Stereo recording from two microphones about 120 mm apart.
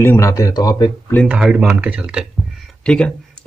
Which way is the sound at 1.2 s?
5° right (ahead or behind).